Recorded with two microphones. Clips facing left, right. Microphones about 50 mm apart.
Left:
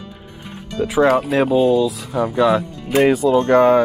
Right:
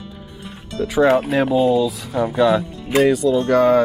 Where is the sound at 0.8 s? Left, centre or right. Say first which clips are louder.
Left 1 dB; centre.